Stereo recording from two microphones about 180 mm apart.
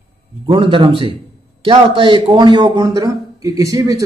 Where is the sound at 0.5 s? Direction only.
25° right (ahead or behind).